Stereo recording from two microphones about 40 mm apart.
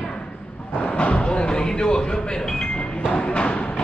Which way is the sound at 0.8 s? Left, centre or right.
Left.